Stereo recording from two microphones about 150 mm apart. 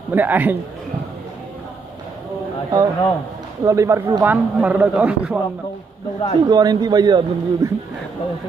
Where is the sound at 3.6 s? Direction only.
20° right (ahead or behind).